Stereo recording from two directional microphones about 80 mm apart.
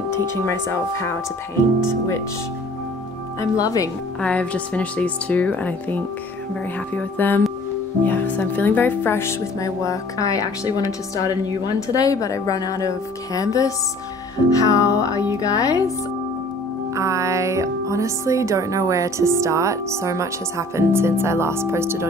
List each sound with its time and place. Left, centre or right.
0.5 s speech: left
3.3 s speech: left
4.2 s speech: centre
6.9 s music: left
8.0 s speech: left
16.9 s speech: right